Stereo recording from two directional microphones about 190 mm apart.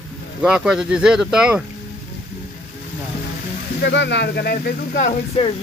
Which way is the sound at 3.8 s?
65° left (ahead or behind).